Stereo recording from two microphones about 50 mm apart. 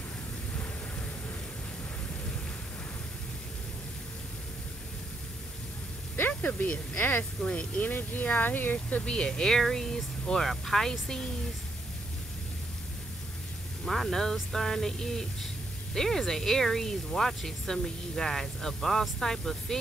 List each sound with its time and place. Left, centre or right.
6.1 s a sound: left
7.0 s speech: left
7.4 s speech: left
7.8 s speech: left
9.1 s speech: centre
13.8 s speech: centre